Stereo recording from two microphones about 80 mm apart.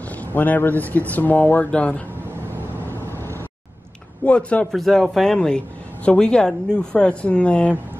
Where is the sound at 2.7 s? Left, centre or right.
Right.